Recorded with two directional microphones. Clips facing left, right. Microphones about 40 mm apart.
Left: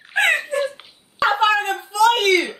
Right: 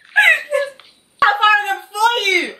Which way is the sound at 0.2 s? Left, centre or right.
Right.